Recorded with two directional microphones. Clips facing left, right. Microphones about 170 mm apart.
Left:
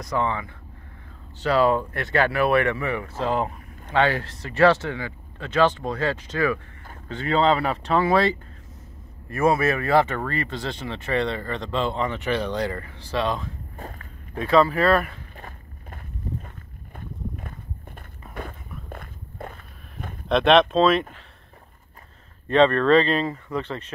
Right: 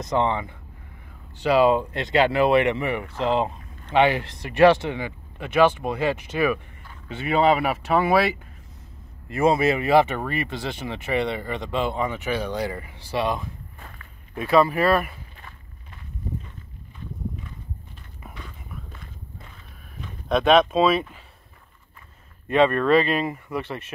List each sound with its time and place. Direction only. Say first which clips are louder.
0.0 s speech: right 3 dB; 20° right (ahead or behind)
13.7 s walk: left 7 dB; 40° left (ahead or behind)
14.4 s speech: even; 10° right (ahead or behind)
15.3 s a sound: left 5 dB; 45° left (ahead or behind)
16.9 s walk: right 1 dB; 55° left (ahead or behind)
20.2 s speech: left 1 dB; centre (ahead or behind)
22.5 s speech: left 1 dB; 10° right (ahead or behind)